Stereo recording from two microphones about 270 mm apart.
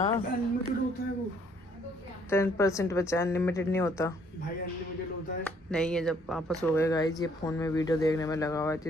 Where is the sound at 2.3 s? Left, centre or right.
Centre.